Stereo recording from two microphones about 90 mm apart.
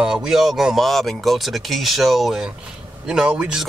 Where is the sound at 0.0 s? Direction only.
5° right (ahead or behind).